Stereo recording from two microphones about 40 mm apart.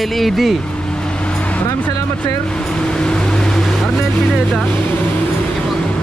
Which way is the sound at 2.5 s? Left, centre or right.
Left.